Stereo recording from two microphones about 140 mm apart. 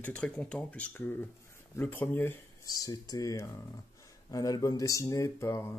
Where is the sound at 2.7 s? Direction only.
25° left (ahead or behind).